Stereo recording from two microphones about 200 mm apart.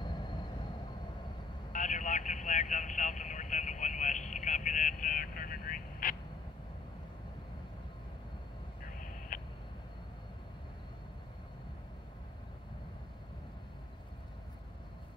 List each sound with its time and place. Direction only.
0.0 s vehicle: 20° left (ahead or behind)
1.7 s vehicle: 40° left (ahead or behind)
9.3 s a sound: 40° left (ahead or behind)